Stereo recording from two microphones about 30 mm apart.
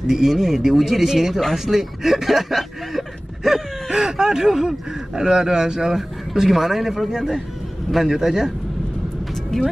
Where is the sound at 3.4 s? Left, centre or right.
Centre.